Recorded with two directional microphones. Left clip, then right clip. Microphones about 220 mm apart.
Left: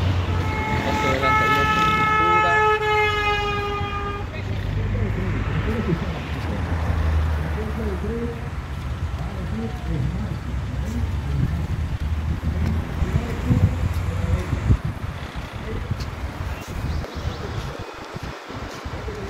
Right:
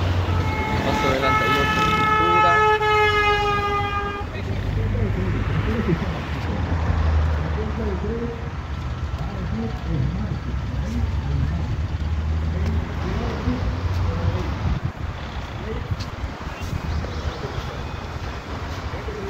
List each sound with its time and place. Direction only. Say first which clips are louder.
0.7 s vehicle: right 1 dB; 40° right (ahead or behind)
2.0 s siren: even; 45° right (ahead or behind)